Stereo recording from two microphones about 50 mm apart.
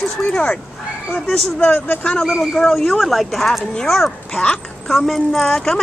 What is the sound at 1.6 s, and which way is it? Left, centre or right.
Speech, left.